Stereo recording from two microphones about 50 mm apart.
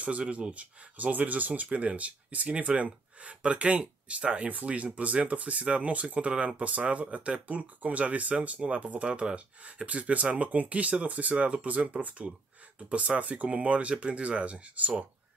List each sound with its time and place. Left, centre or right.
0.0 s speech: right